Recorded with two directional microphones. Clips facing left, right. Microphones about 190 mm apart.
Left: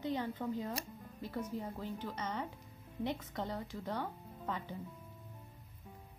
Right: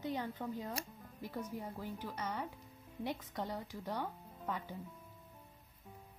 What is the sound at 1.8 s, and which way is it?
Speech, 10° right (ahead or behind).